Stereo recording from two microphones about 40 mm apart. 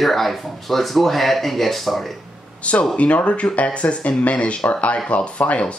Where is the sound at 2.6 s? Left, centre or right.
Left.